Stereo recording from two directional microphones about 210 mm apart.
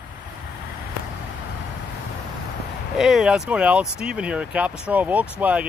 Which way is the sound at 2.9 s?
Centre (ahead or behind).